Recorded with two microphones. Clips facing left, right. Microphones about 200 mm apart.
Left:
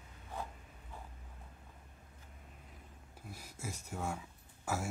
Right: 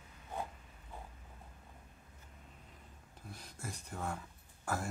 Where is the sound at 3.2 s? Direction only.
10° left (ahead or behind).